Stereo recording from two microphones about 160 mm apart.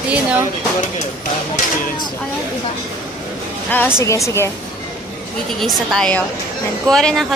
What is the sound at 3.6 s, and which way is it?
Speech, 10° left (ahead or behind).